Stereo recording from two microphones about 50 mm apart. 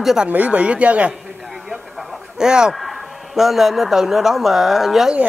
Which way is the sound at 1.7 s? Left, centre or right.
Centre.